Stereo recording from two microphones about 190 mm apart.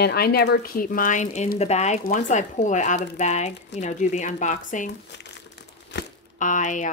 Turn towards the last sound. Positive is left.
turn(degrees=40)  # may be behind; listen again after turning